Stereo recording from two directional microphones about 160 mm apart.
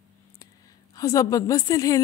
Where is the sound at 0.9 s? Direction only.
20° left (ahead or behind).